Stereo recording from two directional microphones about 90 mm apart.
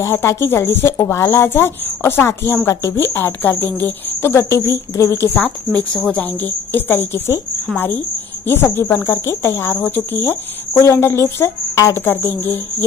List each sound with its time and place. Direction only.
0.0 s a woman's voice: 30° left (ahead or behind)
5.3 s speech: 15° left (ahead or behind)
5.9 s a woman's voice: 5° left (ahead or behind)
6.4 s a woman's voice: 25° left (ahead or behind)